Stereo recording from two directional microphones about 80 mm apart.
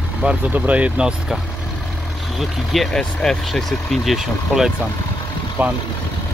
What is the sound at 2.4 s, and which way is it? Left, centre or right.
Speech, centre.